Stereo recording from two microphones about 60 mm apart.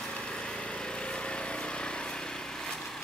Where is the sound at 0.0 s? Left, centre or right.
Centre.